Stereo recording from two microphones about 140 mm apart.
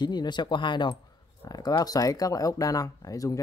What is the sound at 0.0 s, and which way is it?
Speech, 30° left (ahead or behind).